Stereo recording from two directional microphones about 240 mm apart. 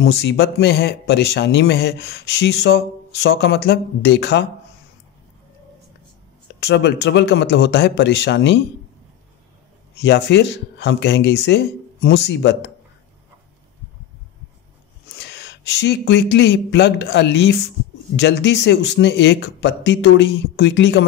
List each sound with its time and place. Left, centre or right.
0.0 s speech: left
6.6 s speech: left
10.0 s speech: left
15.1 s speech: left